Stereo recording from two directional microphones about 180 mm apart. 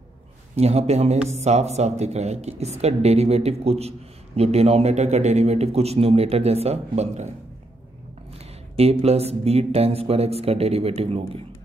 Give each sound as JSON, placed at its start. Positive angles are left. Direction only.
{"t": 0.6, "sound": "a man's voice", "side_deg": -35}
{"t": 8.7, "sound": "a man's voice", "side_deg": -35}